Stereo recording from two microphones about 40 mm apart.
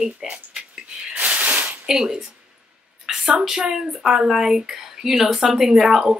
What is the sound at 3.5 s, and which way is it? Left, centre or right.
Speech, centre.